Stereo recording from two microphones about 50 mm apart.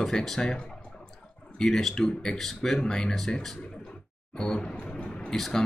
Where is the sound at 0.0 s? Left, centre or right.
Centre.